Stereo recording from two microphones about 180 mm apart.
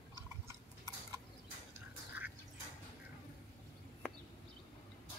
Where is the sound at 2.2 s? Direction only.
10° right (ahead or behind).